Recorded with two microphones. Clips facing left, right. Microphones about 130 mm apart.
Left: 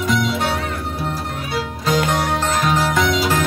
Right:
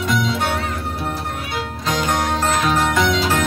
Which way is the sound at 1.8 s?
5° left (ahead or behind).